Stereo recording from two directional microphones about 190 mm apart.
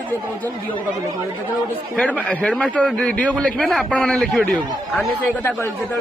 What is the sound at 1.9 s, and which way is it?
A man's voice, 5° left (ahead or behind).